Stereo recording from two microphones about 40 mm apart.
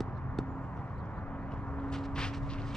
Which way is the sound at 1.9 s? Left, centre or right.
Centre.